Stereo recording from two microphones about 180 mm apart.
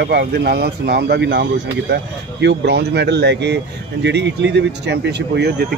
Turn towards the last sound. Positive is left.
turn(degrees=-70)  # may be behind; listen again after turning